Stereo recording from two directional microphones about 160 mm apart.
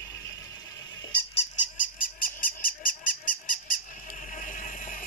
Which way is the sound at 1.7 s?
60° left (ahead or behind).